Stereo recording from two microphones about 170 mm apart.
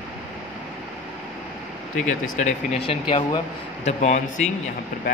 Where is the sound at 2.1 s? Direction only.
40° left (ahead or behind).